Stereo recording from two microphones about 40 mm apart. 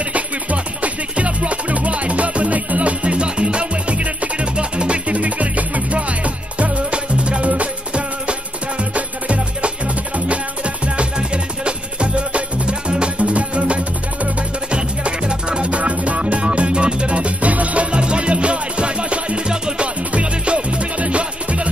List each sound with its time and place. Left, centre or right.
0.1 s music: right